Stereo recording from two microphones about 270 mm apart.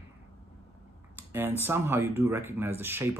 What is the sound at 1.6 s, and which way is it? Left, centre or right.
Speech, centre.